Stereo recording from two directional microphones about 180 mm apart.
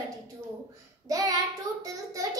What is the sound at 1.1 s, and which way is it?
A child's voice, 20° right (ahead or behind).